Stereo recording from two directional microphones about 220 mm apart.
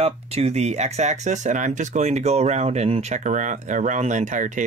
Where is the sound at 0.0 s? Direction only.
30° right (ahead or behind).